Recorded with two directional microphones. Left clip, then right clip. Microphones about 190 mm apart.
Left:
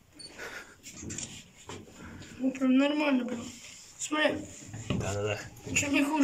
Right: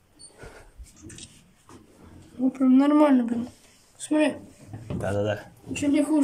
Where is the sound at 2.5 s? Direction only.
65° right (ahead or behind).